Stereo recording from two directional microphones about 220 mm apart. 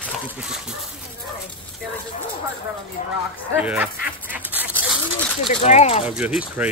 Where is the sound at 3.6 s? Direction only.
5° right (ahead or behind).